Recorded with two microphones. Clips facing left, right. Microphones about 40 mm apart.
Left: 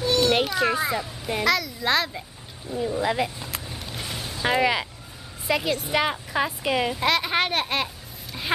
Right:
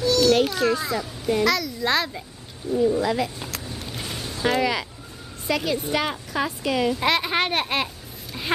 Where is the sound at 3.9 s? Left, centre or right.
Centre.